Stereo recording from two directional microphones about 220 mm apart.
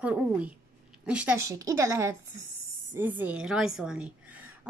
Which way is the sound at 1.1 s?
5° right (ahead or behind).